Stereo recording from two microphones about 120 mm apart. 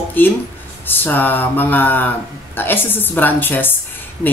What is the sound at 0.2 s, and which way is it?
Speech, 15° left (ahead or behind).